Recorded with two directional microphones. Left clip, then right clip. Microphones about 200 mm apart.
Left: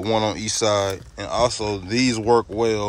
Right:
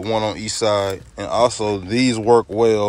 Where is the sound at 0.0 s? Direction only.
15° left (ahead or behind).